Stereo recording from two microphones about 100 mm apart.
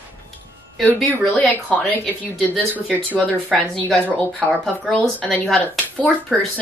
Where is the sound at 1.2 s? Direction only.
5° left (ahead or behind).